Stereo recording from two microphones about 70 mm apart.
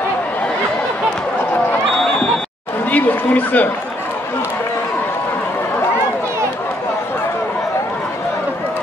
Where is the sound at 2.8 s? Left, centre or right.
Left.